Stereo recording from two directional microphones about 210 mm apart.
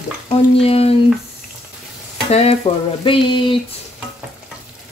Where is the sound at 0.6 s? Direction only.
30° left (ahead or behind).